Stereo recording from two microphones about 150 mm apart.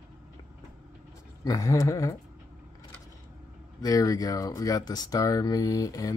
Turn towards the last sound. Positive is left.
turn(degrees=25)  # may be behind; listen again after turning